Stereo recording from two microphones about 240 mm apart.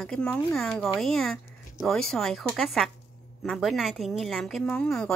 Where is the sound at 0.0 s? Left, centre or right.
Centre.